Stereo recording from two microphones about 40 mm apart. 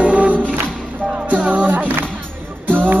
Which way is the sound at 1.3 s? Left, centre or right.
Right.